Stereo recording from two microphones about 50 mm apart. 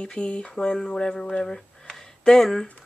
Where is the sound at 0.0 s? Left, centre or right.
Centre.